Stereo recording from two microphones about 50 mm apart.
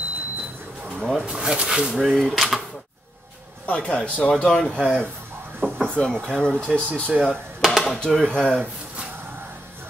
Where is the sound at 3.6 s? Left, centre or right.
Left.